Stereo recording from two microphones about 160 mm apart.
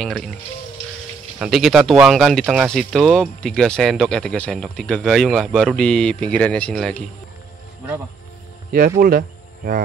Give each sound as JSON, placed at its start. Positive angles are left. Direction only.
{"t": 0.0, "sound": "speech", "side_deg": 5}
{"t": 1.4, "sound": "speech", "side_deg": 0}
{"t": 8.7, "sound": "speech", "side_deg": -60}